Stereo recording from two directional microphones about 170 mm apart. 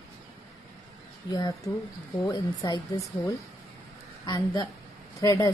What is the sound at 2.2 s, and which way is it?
Speech, 25° left (ahead or behind).